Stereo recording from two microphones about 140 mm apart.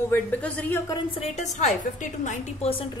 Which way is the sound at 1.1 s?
50° left (ahead or behind).